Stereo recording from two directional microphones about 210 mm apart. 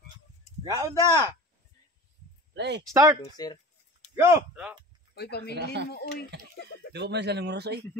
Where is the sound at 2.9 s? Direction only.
15° right (ahead or behind).